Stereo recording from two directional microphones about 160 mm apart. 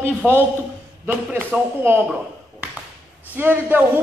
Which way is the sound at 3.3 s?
10° right (ahead or behind).